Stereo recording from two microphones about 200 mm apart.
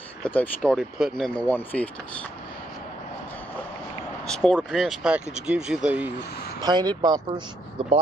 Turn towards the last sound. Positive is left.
turn(degrees=-25)  # may be behind; listen again after turning